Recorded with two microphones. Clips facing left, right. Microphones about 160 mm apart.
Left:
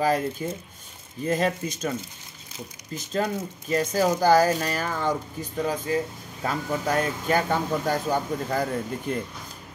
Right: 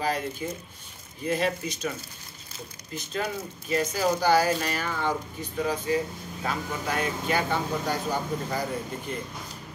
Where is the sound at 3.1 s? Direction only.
45° left (ahead or behind).